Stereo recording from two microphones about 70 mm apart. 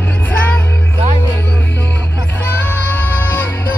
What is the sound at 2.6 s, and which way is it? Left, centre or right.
Music, left.